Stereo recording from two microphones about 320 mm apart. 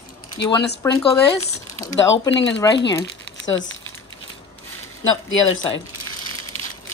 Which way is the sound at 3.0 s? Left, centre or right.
Left.